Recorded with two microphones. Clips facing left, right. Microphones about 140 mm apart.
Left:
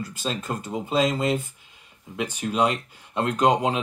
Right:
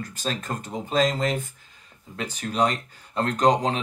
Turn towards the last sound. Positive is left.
turn(degrees=5)  # may be behind; listen again after turning